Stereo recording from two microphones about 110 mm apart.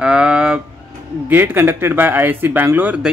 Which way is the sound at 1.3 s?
20° right (ahead or behind).